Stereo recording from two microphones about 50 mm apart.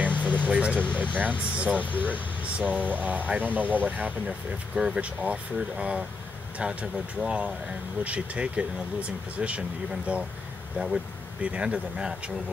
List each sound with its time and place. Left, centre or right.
0.0 s a sound: right
0.9 s speech: right
4.7 s speech: centre
11.4 s speech: right